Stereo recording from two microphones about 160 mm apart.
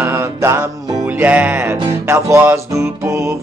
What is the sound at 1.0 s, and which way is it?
Music, 10° right (ahead or behind).